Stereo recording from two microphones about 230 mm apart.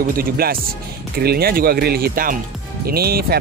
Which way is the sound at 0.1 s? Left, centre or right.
Right.